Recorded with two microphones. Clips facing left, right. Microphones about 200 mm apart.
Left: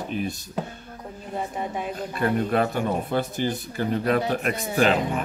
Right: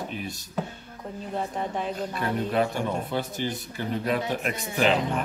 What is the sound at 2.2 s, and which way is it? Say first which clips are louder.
Speech: left 4 dB; 50° left (ahead or behind).